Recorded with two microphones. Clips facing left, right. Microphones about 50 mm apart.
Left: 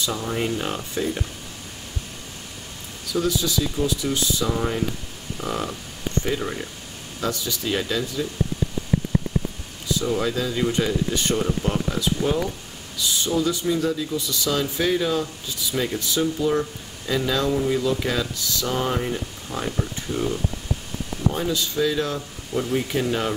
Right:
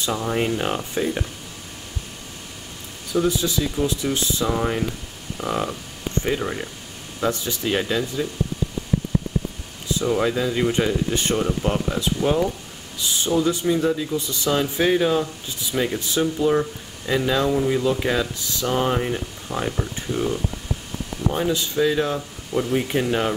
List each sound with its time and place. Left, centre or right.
0.1 s speech: centre
3.1 s speech: right; by 6.7 s centre
7.2 s speech: right
10.0 s speech: right
12.4 s a sound: right
13.3 s speech: right
21.3 s speech: right